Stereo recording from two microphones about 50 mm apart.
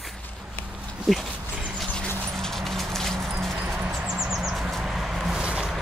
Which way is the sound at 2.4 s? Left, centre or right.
Centre.